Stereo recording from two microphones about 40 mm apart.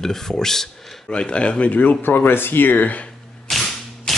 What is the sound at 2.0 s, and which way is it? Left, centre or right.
Speech, left.